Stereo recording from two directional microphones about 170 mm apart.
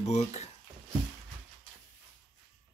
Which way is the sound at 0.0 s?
40° left (ahead or behind).